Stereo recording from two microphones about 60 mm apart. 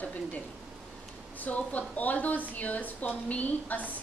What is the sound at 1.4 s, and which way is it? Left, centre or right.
Speech, left.